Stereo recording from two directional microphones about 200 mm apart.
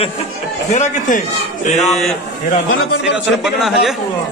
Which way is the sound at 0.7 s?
35° left (ahead or behind).